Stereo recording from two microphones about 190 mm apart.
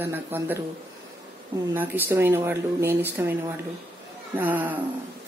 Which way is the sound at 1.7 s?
10° right (ahead or behind).